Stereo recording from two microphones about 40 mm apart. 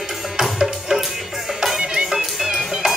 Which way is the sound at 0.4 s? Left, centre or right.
Centre.